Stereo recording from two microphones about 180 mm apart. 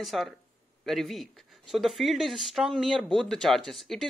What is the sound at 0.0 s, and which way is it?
Speech, centre (ahead or behind).